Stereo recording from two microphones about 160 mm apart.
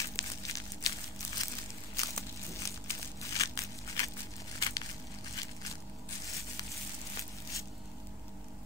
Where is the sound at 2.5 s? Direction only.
20° left (ahead or behind).